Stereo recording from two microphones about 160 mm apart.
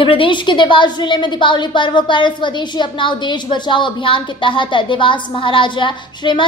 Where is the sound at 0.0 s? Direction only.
35° left (ahead or behind).